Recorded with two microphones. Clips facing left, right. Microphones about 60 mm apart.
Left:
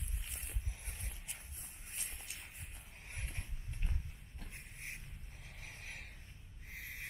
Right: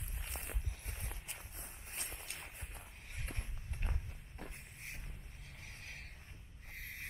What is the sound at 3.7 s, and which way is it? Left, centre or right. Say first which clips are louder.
Walk: right 2 dB; right.